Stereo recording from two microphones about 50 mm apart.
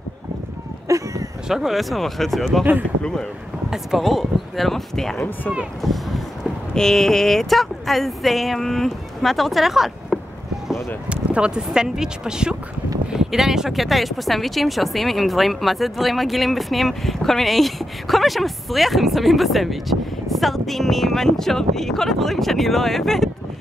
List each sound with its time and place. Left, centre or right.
0.8 s a sound: right
1.5 s speech: centre
3.0 s speech: centre
3.7 s speech: centre
5.8 s a sound: centre
6.7 s speech: centre
11.1 s speech: right; by 23.3 s centre